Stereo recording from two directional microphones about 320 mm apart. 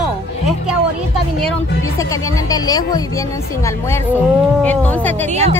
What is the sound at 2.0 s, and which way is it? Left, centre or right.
Speech, centre.